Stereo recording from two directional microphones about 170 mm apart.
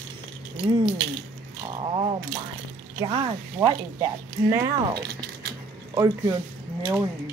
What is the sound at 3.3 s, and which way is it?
Speech, 15° right (ahead or behind).